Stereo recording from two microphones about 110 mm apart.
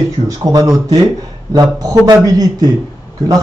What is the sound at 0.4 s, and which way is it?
Speech, 35° right (ahead or behind).